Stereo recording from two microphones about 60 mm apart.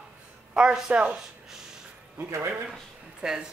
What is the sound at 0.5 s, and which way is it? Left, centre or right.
Speech, centre.